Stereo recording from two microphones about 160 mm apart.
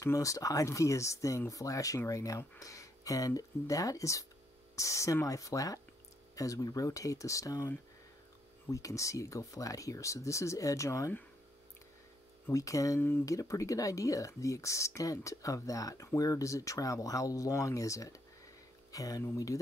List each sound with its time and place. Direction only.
0.0 s speech: 20° left (ahead or behind)
12.4 s speech: 20° left (ahead or behind)